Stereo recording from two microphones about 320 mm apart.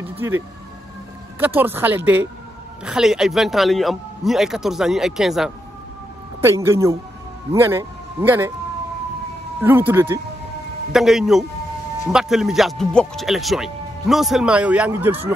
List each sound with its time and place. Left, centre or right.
0.2 s speech: centre
1.4 s speech: centre
9.6 s speech: centre